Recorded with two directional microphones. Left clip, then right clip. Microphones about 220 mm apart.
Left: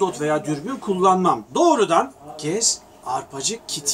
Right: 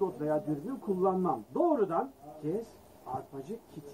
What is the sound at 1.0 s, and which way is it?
Speech, 20° left (ahead or behind).